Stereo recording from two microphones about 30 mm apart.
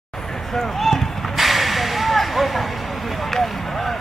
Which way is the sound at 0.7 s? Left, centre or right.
Centre.